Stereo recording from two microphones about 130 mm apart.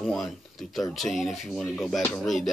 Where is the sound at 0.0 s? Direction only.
Centre (ahead or behind).